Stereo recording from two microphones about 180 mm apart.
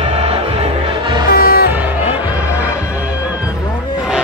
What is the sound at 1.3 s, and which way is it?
Music, 60° left (ahead or behind).